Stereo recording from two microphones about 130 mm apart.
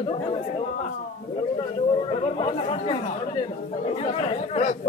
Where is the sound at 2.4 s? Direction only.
50° left (ahead or behind).